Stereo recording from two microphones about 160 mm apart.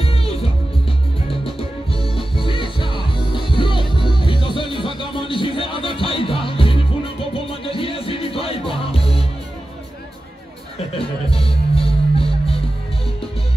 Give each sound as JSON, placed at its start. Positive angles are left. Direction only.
{"t": 0.0, "sound": "music", "side_deg": 35}
{"t": 11.2, "sound": "music", "side_deg": 35}